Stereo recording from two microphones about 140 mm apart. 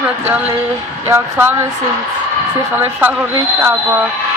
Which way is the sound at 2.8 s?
15° right (ahead or behind).